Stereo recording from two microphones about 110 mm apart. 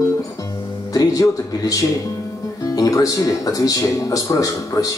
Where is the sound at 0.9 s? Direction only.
30° left (ahead or behind).